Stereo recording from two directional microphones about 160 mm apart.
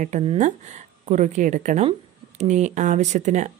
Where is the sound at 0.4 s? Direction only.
45° right (ahead or behind).